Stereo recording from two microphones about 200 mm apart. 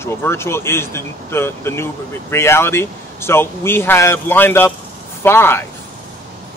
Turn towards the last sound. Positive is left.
turn(degrees=10)  # may be behind; listen again after turning